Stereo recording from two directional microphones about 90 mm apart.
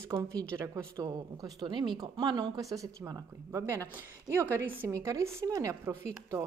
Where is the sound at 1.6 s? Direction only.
60° right (ahead or behind); by 3.8 s 30° right (ahead or behind).